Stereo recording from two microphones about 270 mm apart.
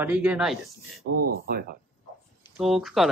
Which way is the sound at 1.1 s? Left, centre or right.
Right.